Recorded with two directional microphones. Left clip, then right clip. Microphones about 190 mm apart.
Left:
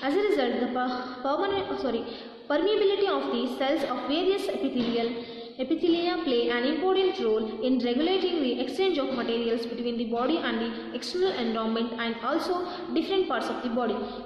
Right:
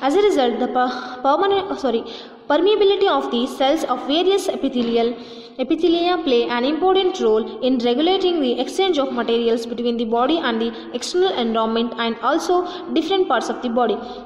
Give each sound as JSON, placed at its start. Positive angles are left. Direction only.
{"t": 0.0, "sound": "a woman's voice", "side_deg": -30}